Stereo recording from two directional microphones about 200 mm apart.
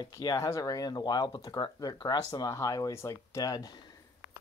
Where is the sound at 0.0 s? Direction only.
20° left (ahead or behind).